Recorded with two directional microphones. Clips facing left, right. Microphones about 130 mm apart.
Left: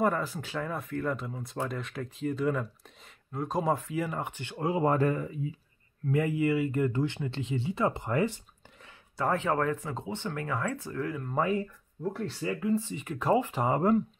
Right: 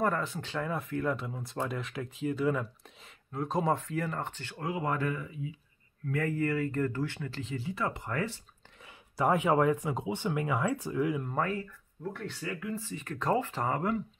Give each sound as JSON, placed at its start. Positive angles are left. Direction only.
{"t": 0.0, "sound": "speech", "side_deg": 5}
{"t": 6.0, "sound": "speech", "side_deg": 15}
{"t": 9.1, "sound": "speech", "side_deg": -10}
{"t": 11.3, "sound": "speech", "side_deg": 15}
{"t": 11.6, "sound": "speech", "side_deg": 35}